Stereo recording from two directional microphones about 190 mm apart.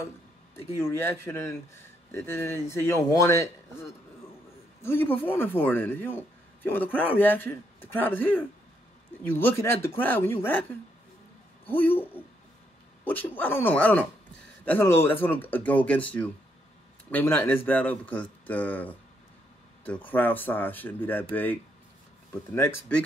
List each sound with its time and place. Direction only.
0.7 s speech: 15° left (ahead or behind)
11.6 s speech: 10° left (ahead or behind)
20.1 s speech: 10° left (ahead or behind)